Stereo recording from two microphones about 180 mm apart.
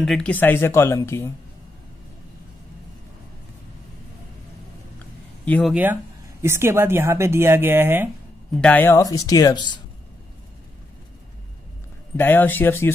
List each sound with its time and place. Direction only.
0.0 s speech: 5° left (ahead or behind)
4.9 s a sound: 10° left (ahead or behind)
6.4 s speech: 15° right (ahead or behind)
8.5 s speech: 10° left (ahead or behind)
12.2 s speech: 10° left (ahead or behind)